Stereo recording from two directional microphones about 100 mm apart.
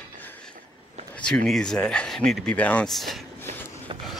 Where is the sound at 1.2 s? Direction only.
5° left (ahead or behind).